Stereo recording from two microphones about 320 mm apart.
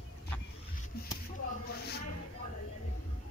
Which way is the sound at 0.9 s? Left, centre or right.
Left.